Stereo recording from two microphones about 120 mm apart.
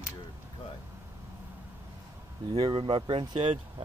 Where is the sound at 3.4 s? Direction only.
65° right (ahead or behind).